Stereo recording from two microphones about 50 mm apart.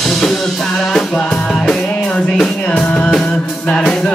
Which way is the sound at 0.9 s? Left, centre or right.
Centre.